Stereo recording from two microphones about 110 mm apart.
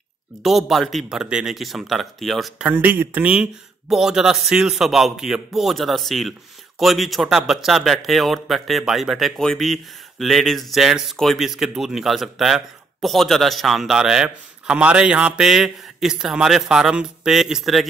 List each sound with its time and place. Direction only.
0.4 s speech: centre (ahead or behind)
2.6 s speech: 20° right (ahead or behind); by 17.8 s centre (ahead or behind)